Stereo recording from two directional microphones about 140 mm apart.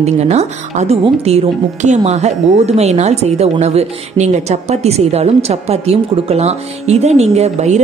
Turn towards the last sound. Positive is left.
turn(degrees=-55)  # may be behind; listen again after turning